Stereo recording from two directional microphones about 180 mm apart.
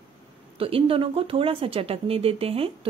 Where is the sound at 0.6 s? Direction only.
30° right (ahead or behind).